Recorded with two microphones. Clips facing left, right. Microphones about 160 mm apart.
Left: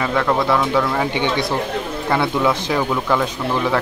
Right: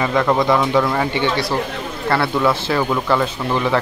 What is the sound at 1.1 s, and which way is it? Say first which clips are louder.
A man's voice: right 1 dB; 20° left (ahead or behind).